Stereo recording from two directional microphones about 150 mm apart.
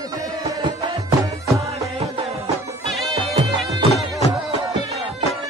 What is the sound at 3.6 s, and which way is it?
Music, centre (ahead or behind).